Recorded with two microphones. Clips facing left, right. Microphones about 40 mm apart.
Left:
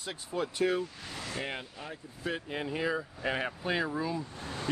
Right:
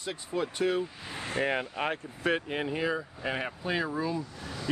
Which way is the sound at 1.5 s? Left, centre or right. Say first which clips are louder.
Right 10 dB; right.